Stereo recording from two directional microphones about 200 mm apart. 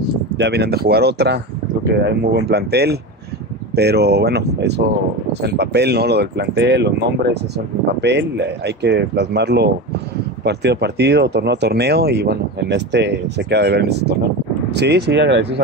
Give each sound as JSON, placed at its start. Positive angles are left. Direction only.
{"t": 0.4, "sound": "speech", "side_deg": -55}